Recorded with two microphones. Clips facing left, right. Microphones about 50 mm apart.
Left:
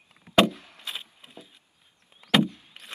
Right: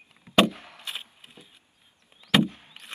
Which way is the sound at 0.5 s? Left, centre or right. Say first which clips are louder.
Right 2 dB; right.